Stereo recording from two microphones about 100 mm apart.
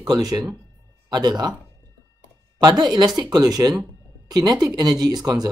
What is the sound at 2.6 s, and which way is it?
Speech, 45° right (ahead or behind).